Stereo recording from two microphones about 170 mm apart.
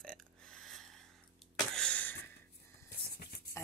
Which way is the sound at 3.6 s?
15° left (ahead or behind).